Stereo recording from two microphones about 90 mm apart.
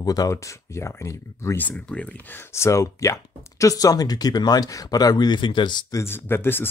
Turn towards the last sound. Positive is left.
turn(degrees=25)  # may be behind; listen again after turning